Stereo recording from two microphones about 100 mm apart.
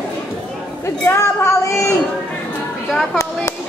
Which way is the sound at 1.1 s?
30° left (ahead or behind).